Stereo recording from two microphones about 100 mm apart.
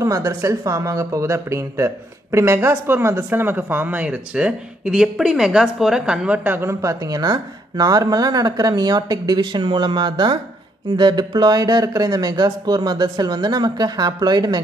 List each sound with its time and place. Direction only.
0.0 s speech: 35° right (ahead or behind)